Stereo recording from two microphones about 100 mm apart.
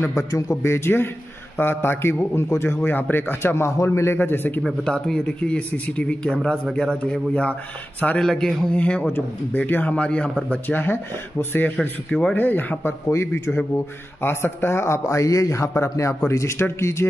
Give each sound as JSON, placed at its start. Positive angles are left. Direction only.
{"t": 0.3, "sound": "a man's voice", "side_deg": 30}
{"t": 4.6, "sound": "a man's voice", "side_deg": 5}
{"t": 11.8, "sound": "a man's voice", "side_deg": 10}